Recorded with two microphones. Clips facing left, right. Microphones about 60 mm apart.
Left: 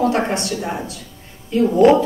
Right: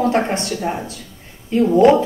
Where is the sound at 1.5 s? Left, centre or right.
Right.